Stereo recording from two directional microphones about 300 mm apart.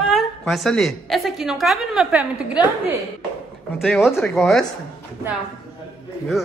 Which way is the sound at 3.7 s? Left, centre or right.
Centre.